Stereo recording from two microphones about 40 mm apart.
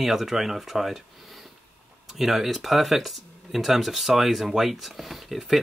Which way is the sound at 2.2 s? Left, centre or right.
Centre.